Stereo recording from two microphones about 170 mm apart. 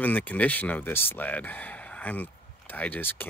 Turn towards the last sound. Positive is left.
turn(degrees=10)  # may be behind; listen again after turning